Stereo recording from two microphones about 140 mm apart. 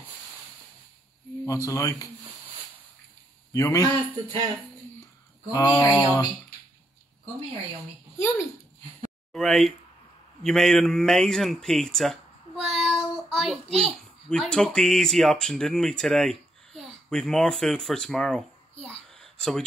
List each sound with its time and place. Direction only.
1.4 s mantra: 25° left (ahead or behind)
3.5 s mantra: 25° left (ahead or behind)
3.9 s speech: 35° right (ahead or behind)
5.5 s mantra: 20° left (ahead or behind)
9.3 s a man's voice: centre (ahead or behind)